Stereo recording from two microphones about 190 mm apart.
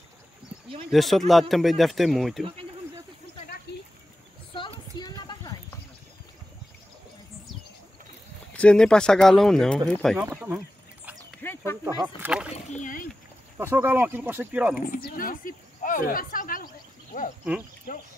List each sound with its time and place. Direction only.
0.9 s speech: centre (ahead or behind)
3.7 s a sound: 60° left (ahead or behind)
4.6 s a sound: 25° left (ahead or behind)
8.5 s speech: 5° left (ahead or behind)
10.3 s speech: 10° right (ahead or behind)
11.4 s a sound: 10° left (ahead or behind)
12.2 s speech: 5° right (ahead or behind)
12.8 s speech: 45° left (ahead or behind)
13.6 s speech: 10° right (ahead or behind)
14.8 s speech: 45° left (ahead or behind)